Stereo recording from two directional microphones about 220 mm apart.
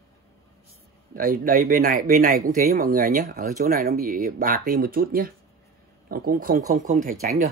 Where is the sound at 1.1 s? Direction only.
40° right (ahead or behind).